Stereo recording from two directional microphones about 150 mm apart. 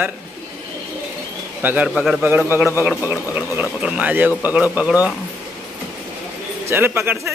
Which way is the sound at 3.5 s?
10° right (ahead or behind).